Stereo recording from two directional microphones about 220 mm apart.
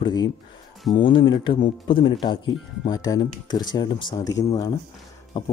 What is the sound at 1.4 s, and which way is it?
Speech, 20° left (ahead or behind).